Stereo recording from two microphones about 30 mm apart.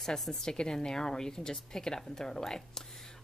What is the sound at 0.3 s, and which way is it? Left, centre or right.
A woman's voice, left.